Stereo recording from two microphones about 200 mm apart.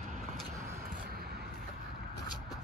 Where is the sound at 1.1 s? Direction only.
50° right (ahead or behind).